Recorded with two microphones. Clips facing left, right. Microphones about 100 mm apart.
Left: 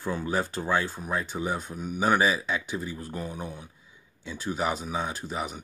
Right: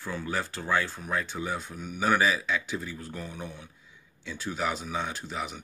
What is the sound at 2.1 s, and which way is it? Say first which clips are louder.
Speech: left 1 dB; 20° left (ahead or behind).